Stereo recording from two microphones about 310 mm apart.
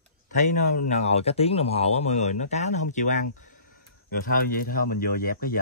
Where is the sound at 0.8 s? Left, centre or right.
Left.